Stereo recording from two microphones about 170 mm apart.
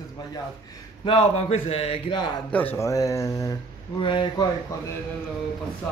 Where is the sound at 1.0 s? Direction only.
35° left (ahead or behind).